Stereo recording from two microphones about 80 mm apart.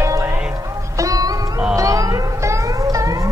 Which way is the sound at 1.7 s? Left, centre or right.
Right.